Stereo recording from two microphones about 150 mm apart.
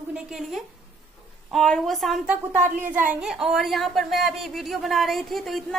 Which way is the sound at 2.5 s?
15° right (ahead or behind).